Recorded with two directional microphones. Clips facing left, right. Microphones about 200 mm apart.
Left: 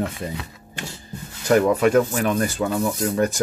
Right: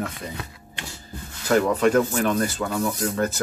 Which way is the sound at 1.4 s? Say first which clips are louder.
Left 2 dB; 15° left (ahead or behind).